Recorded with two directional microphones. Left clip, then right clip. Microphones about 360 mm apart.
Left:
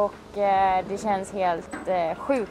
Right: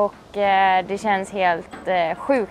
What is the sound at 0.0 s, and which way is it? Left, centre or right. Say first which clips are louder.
Speech: right 3 dB; right.